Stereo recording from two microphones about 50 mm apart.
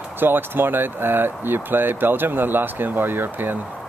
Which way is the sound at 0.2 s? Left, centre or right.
Right.